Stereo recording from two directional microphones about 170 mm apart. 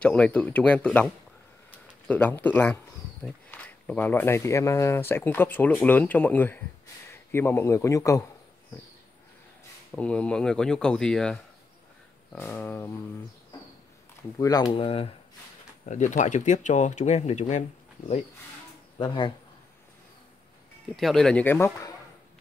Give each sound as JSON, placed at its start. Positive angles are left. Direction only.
{"t": 0.0, "sound": "a man's voice", "side_deg": 5}
{"t": 9.9, "sound": "speech", "side_deg": 5}
{"t": 14.4, "sound": "speech", "side_deg": 25}
{"t": 15.8, "sound": "speech", "side_deg": 45}
{"t": 18.9, "sound": "speech", "side_deg": 25}
{"t": 20.9, "sound": "speech", "side_deg": 0}